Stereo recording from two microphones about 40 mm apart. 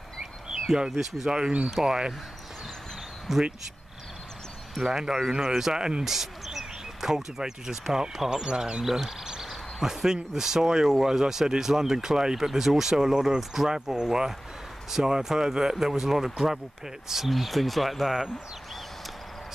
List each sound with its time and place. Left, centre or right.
0.2 s a sound: centre
1.3 s speech: right
3.3 s speech: centre
4.9 s speech: centre
5.4 s speech: centre
5.7 s speech: centre
6.0 s a sound: centre
7.2 s speech: centre
8.8 s cricket: centre
9.8 s speech: centre